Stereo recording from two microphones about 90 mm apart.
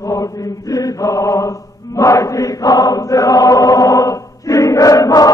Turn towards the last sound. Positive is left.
turn(degrees=45)  # may be behind; listen again after turning